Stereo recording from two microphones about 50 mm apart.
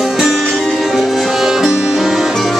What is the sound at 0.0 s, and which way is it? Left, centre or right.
Music, centre.